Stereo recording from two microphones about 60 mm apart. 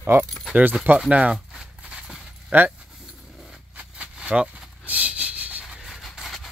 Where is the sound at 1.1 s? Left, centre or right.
Centre.